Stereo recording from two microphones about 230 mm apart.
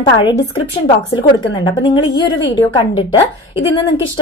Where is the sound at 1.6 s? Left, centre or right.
Centre.